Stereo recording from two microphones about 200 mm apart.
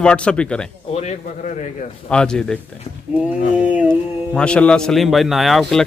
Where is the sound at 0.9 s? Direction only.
35° left (ahead or behind).